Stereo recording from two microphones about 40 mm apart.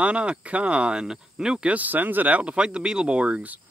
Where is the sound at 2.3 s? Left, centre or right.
Right.